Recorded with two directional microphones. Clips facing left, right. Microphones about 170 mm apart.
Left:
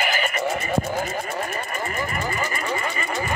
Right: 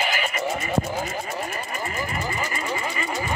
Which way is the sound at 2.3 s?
50° left (ahead or behind).